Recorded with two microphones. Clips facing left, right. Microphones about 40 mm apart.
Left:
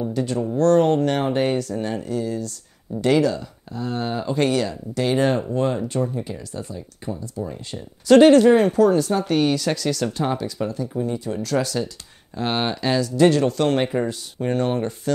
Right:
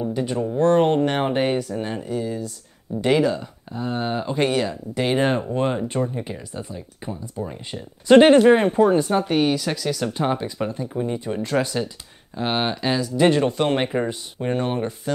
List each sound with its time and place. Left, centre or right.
0.0 s speech: centre